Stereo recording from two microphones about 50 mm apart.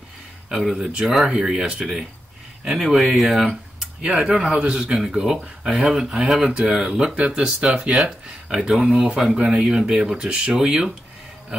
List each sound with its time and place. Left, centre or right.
0.5 s speech: centre
3.4 s speech: centre